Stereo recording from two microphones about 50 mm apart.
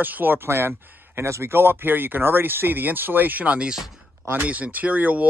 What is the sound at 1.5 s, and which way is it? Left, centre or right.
Speech, right.